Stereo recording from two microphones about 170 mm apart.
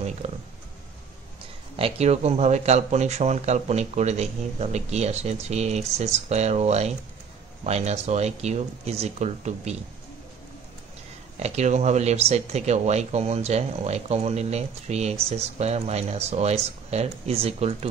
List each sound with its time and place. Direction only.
0.2 s a sound: 40° right (ahead or behind)
1.8 s speech: 40° right (ahead or behind)
11.3 s speech: 40° right (ahead or behind)